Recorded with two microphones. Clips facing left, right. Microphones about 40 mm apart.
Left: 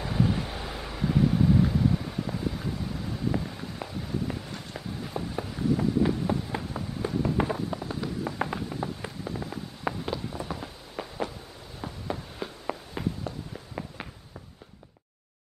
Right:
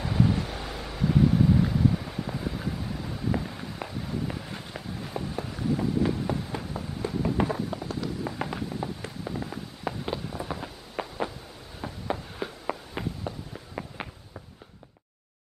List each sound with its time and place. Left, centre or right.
0.0 s vehicle: centre
6.7 s a sound: centre
10.0 s run: centre
11.0 s a sound: centre
12.4 s walk: centre
13.0 s walk: centre
13.8 s walk: centre